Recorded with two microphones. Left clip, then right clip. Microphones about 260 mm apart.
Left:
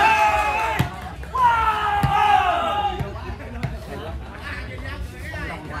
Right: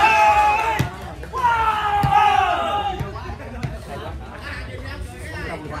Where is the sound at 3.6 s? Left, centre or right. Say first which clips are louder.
Left 1 dB; left.